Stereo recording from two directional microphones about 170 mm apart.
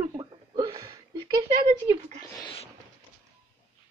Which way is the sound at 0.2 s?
20° right (ahead or behind).